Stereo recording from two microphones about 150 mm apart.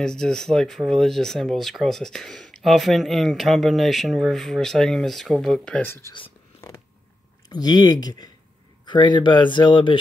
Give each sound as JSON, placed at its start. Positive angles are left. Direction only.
{"t": 0.0, "sound": "speech", "side_deg": 5}
{"t": 7.4, "sound": "speech", "side_deg": 25}